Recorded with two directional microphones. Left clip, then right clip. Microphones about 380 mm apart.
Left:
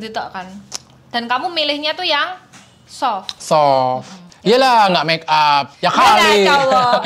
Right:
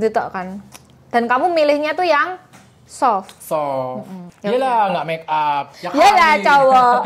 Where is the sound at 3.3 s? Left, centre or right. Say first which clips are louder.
Left 8 dB; left.